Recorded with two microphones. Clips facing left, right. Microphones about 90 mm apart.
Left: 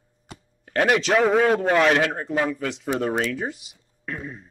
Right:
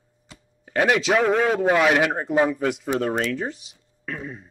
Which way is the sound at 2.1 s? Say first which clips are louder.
Right 4 dB; 20° right (ahead or behind).